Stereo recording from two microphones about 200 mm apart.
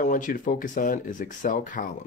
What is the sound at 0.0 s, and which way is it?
Speech, 45° left (ahead or behind).